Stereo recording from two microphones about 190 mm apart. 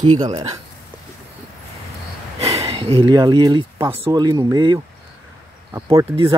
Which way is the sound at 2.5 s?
30° right (ahead or behind).